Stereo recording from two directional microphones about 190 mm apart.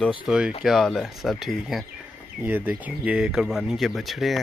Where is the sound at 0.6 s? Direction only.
Centre (ahead or behind).